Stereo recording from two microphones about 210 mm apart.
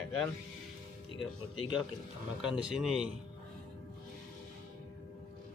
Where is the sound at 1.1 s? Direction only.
25° left (ahead or behind).